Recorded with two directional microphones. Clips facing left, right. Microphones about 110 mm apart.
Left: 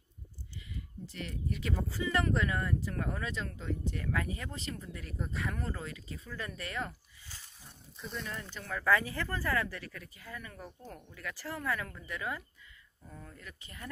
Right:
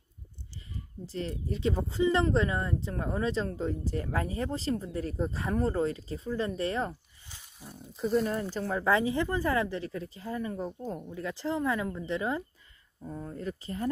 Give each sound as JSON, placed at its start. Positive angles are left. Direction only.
{"t": 0.7, "sound": "speech", "side_deg": -35}
{"t": 8.1, "sound": "speech", "side_deg": -40}
{"t": 8.6, "sound": "speech", "side_deg": -25}